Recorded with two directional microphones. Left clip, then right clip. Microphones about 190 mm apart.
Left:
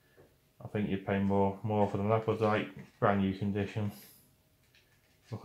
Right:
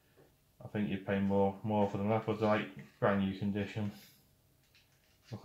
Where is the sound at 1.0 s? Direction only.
35° left (ahead or behind).